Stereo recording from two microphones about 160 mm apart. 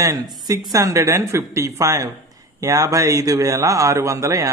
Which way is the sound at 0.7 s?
20° right (ahead or behind).